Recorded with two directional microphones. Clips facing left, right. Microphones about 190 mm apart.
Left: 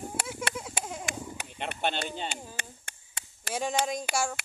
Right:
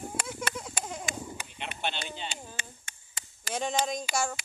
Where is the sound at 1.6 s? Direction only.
45° left (ahead or behind).